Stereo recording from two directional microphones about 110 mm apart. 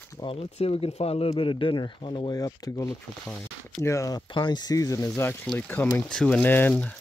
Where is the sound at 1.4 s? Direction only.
50° left (ahead or behind).